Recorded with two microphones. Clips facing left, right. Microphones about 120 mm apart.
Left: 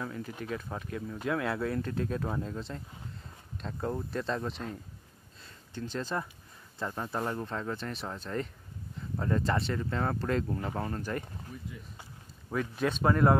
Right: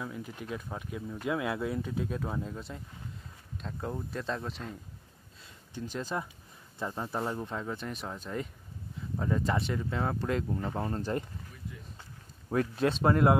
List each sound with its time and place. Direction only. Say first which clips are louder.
0.0 s speech: left 2 dB; 10° right (ahead or behind)
5.8 s speech: left 1 dB; 10° right (ahead or behind)
10.8 s speech: right 2 dB; 25° right (ahead or behind)
12.5 s speech: right 3 dB; 30° right (ahead or behind)